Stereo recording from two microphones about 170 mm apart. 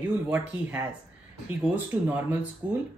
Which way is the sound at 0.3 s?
10° right (ahead or behind).